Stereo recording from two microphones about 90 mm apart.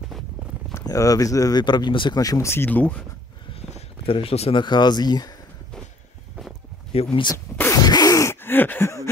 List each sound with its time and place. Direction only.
0.8 s speech: 40° left (ahead or behind)
1.6 s speech: 55° left (ahead or behind)
2.1 s speech: 40° left (ahead or behind)
2.5 s speech: 25° left (ahead or behind)
4.0 s speech: 90° left
4.6 s speech: 55° left (ahead or behind)
6.9 s speech: 90° left
7.3 s sneeze: 25° left (ahead or behind)
7.7 s a sound: 45° left (ahead or behind)
8.2 s a sound: 25° left (ahead or behind)